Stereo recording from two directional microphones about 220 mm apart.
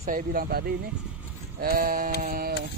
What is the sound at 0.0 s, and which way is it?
Speech, 40° right (ahead or behind).